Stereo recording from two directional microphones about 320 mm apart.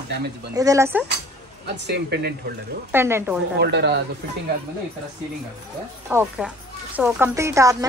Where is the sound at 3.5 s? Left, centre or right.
Right.